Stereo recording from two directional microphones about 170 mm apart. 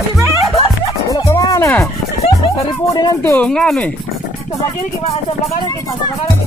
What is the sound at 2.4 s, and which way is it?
Speech, 20° left (ahead or behind).